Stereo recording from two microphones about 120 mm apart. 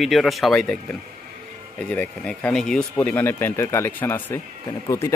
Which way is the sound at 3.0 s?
15° left (ahead or behind).